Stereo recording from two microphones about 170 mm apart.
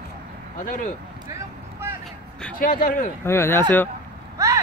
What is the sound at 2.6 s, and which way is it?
Speech, 50° left (ahead or behind).